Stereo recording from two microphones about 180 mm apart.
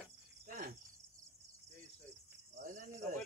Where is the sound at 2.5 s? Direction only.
45° right (ahead or behind).